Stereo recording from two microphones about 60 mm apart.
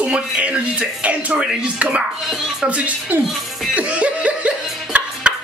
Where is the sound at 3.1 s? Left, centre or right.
Right.